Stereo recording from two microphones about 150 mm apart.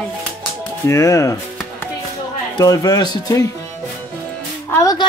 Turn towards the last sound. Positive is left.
turn(degrees=25)  # may be behind; listen again after turning